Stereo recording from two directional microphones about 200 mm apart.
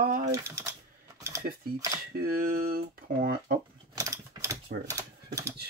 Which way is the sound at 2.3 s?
45° right (ahead or behind).